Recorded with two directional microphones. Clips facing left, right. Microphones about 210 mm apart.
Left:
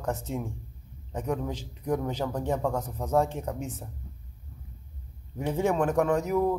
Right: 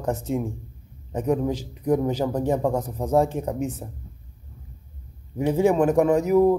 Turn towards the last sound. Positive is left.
turn(degrees=-15)  # may be behind; listen again after turning